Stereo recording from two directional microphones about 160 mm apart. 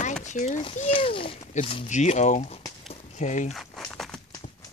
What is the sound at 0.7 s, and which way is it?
A child's voice, 35° left (ahead or behind).